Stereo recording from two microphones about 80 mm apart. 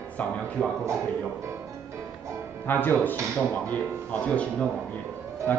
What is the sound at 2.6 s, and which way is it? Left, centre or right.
Speech, left.